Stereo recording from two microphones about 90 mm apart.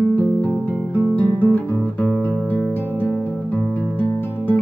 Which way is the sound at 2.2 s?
20° left (ahead or behind).